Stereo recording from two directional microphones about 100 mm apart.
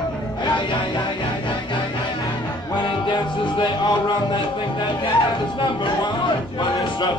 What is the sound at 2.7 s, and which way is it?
Music, 50° left (ahead or behind).